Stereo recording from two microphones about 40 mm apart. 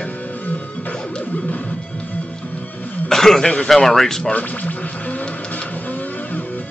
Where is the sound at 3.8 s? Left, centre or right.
Centre.